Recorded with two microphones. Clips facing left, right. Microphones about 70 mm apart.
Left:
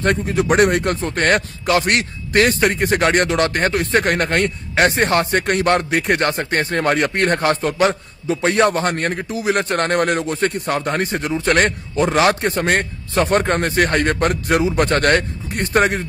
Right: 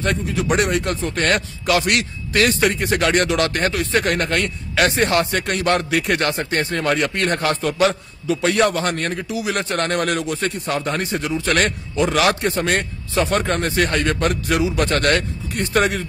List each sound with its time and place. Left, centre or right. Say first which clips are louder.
0.0 s speech: left 4 dB; left
1.7 s a man's voice: left 2 dB; left
3.5 s a man's voice: left 2 dB; left
5.9 s speech: left 2 dB; left